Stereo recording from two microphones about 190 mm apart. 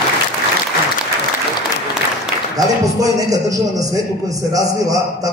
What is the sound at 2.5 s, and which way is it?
A man's voice, 20° right (ahead or behind).